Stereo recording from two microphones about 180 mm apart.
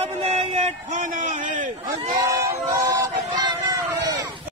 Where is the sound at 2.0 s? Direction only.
20° right (ahead or behind).